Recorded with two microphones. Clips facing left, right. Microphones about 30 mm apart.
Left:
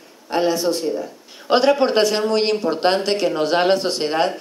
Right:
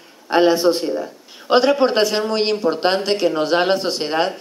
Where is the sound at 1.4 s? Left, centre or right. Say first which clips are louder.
Right 1 dB; centre.